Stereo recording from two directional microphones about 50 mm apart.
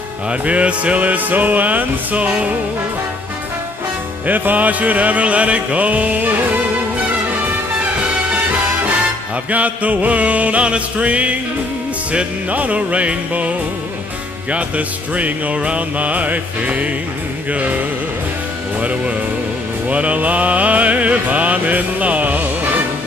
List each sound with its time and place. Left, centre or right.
0.3 s music: right
4.3 s music: right
9.5 s music: right